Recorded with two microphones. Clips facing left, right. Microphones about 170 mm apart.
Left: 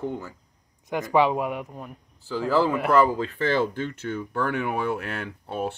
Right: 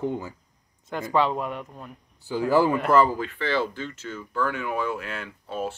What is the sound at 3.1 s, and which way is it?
Speech, 40° left (ahead or behind).